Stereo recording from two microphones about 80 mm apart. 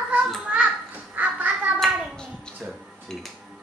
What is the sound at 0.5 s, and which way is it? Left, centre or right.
Children playing, centre.